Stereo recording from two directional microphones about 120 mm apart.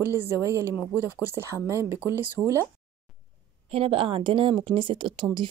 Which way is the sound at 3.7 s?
50° right (ahead or behind).